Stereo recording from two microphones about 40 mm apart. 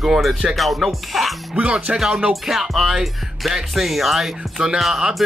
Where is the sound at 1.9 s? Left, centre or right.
Centre.